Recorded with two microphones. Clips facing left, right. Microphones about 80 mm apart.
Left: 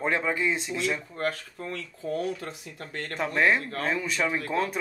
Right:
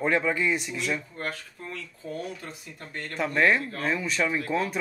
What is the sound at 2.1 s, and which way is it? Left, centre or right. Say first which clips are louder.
Speech: left 5 dB; left.